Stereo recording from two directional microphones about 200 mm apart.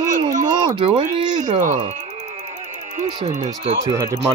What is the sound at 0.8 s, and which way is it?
Speech, 25° right (ahead or behind).